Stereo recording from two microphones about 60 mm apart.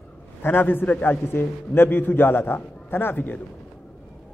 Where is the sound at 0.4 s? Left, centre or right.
Left.